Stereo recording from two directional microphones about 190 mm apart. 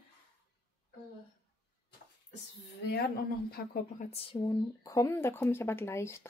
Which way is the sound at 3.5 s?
55° left (ahead or behind).